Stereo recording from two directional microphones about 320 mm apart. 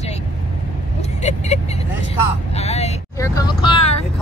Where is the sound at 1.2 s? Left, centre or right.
Left.